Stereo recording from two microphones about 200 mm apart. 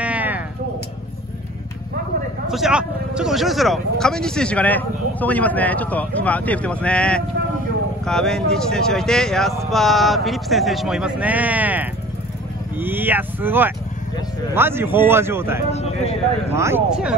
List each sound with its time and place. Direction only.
0.0 s a sound: 5° right (ahead or behind)
2.5 s speech: 5° right (ahead or behind)
15.7 s speech: 30° left (ahead or behind)
16.5 s speech: 15° right (ahead or behind)